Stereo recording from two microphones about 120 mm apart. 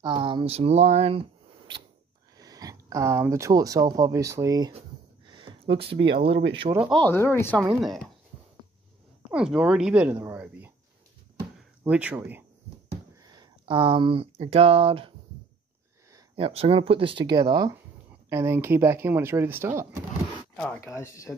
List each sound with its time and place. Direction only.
0.0 s speech: 45° right (ahead or behind); by 1.2 s 60° right (ahead or behind)
2.3 s speech: 30° right (ahead or behind)
5.2 s speech: 40° right (ahead or behind)
7.1 s speech: 20° left (ahead or behind)
7.8 s speech: centre (ahead or behind)
9.3 s speech: 5° right (ahead or behind)
11.8 s speech: 10° right (ahead or behind)
13.1 s speech: 35° right (ahead or behind); by 15.1 s 50° right (ahead or behind)
16.3 s speech: 55° right (ahead or behind); by 17.7 s 35° right (ahead or behind)
18.3 s speech: 20° right (ahead or behind)
20.8 s speech: 25° left (ahead or behind)